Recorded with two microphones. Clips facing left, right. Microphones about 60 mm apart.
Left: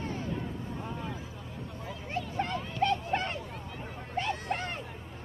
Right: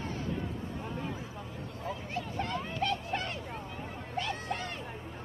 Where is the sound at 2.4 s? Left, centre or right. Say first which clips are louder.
Left 4 dB; left.